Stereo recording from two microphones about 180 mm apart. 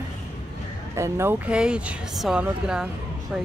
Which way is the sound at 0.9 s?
15° right (ahead or behind).